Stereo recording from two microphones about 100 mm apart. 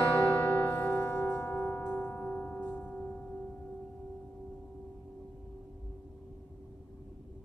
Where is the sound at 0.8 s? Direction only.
20° left (ahead or behind).